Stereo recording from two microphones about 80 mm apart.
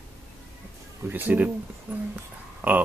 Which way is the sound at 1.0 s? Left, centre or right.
Right.